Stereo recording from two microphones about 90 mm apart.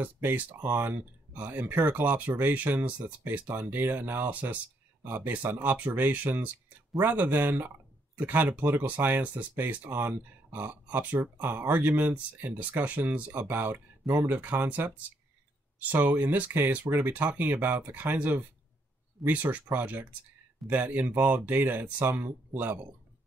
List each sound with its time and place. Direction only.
0.0 s speech: 20° right (ahead or behind)